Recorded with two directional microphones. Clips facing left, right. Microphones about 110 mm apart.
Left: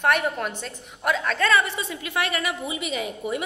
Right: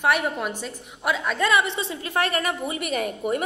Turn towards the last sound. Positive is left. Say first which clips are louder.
# right 3 dB
turn(degrees=-50)  # may be behind; listen again after turning